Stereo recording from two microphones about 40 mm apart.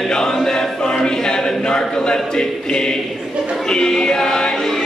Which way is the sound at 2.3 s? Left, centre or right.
Centre.